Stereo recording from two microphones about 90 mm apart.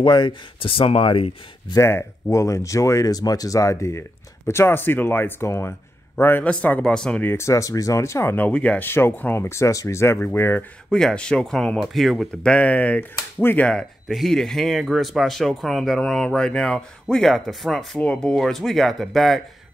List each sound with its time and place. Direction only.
0.0 s speech: 60° left (ahead or behind); by 1.3 s 85° left
1.8 s speech: 30° left (ahead or behind); by 7.2 s 10° left (ahead or behind)
7.2 s speech: 30° left (ahead or behind)
8.5 s speech: 15° left (ahead or behind)
10.9 s speech: 5° left (ahead or behind)
12.4 s speech: 15° left (ahead or behind)
14.0 s speech: centre (ahead or behind)